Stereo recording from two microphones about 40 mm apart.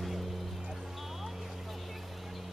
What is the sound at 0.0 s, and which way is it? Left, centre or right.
Vehicle, centre.